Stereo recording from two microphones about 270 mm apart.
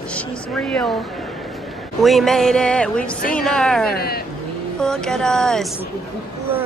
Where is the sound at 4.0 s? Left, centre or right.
Left.